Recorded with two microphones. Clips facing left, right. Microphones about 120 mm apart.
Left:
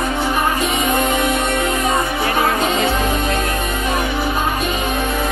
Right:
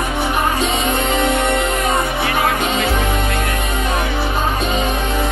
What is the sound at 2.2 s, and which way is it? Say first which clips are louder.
Music: left 1 dB; 30° left (ahead or behind).